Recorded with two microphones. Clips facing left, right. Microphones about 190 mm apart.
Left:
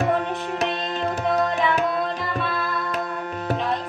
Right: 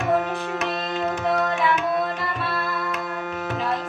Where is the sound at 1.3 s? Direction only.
35° left (ahead or behind).